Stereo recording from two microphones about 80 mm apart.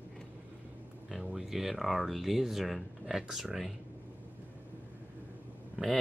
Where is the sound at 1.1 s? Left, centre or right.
Centre.